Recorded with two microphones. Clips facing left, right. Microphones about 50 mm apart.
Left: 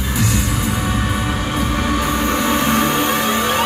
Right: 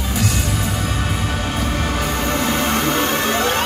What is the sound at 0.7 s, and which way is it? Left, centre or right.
Music, centre.